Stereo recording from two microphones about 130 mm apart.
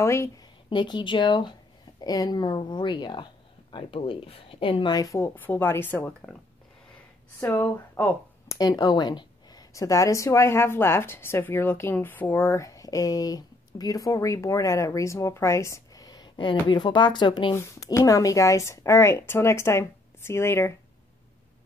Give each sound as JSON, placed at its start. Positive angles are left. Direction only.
{"t": 0.0, "sound": "a woman's voice", "side_deg": 20}
{"t": 0.7, "sound": "a woman's voice", "side_deg": 35}
{"t": 7.3, "sound": "speech", "side_deg": 20}
{"t": 8.5, "sound": "a woman's voice", "side_deg": 30}
{"t": 17.6, "sound": "a woman's voice", "side_deg": 25}